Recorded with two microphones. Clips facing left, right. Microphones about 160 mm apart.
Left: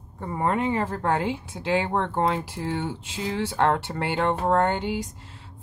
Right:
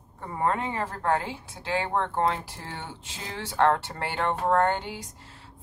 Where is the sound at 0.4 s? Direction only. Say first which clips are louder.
Left 3 dB; 20° left (ahead or behind).